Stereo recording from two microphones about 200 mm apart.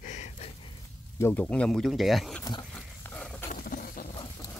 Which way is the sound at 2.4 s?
20° left (ahead or behind).